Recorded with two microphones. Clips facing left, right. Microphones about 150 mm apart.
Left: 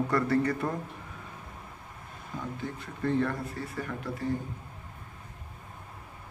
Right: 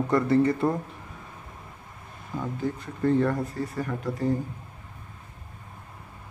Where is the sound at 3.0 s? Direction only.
35° right (ahead or behind).